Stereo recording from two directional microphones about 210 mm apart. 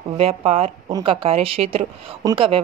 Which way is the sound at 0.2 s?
30° right (ahead or behind).